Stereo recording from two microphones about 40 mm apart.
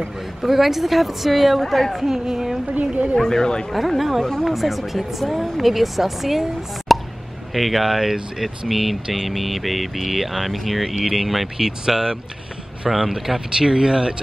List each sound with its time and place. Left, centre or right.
0.4 s speech: centre
2.7 s a woman's voice: right
3.2 s speech: centre
3.7 s speech: centre
6.9 s plop: centre
7.5 s speech: centre
10.8 s speech: centre